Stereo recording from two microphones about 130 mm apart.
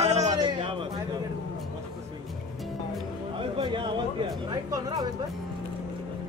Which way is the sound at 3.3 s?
45° right (ahead or behind).